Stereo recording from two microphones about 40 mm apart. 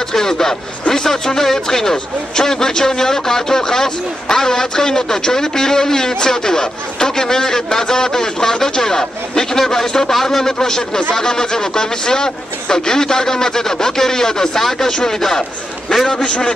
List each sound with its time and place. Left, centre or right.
0.1 s speech: centre
16.1 s a man's voice: left